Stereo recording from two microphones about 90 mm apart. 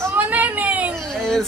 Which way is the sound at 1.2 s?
5° left (ahead or behind).